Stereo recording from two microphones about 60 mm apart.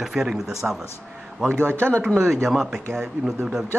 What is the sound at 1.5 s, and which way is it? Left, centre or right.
Speech, right.